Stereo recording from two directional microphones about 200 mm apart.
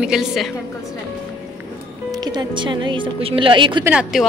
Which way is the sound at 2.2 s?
20° right (ahead or behind).